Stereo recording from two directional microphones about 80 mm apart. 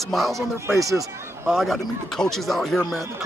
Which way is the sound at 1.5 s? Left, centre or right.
Centre.